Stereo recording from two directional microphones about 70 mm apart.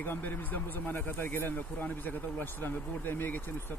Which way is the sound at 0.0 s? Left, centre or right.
Left.